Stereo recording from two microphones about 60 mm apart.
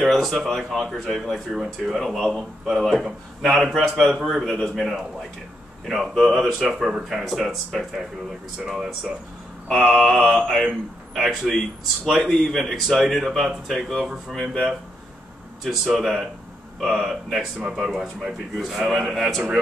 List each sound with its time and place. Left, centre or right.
0.0 s speech: centre
4.6 s a man's voice: centre
5.9 s speech: centre
9.8 s speech: centre
14.3 s a man's voice: centre
15.6 s speech: centre